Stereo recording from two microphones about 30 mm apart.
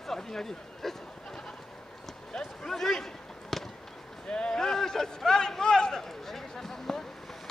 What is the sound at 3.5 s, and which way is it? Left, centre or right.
Fireworks, centre.